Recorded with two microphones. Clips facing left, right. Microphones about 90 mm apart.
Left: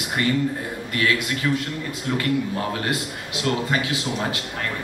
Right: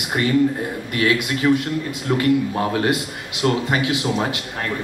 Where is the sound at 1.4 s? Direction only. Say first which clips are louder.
Right 7 dB; 30° right (ahead or behind).